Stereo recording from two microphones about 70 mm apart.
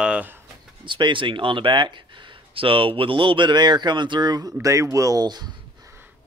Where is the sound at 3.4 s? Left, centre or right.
Right.